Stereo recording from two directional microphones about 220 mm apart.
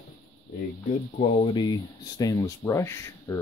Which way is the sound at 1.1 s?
25° left (ahead or behind).